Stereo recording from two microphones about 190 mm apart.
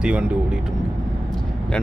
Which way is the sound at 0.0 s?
5° right (ahead or behind).